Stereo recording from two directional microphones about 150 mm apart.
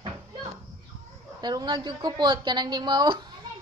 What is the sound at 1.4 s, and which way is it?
A woman's voice, 25° right (ahead or behind).